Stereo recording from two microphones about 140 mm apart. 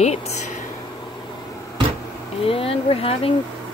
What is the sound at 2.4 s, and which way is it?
Speech, 40° left (ahead or behind).